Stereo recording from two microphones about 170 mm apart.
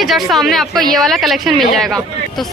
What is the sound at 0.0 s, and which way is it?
A woman's voice, centre (ahead or behind).